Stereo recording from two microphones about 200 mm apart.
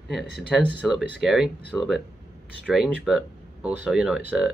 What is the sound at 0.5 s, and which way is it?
Speech, centre (ahead or behind).